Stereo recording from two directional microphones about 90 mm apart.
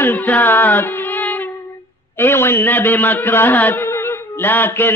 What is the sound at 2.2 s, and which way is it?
Music, 25° left (ahead or behind).